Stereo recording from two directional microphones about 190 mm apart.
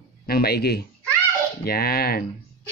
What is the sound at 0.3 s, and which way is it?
A man's voice, 55° left (ahead or behind).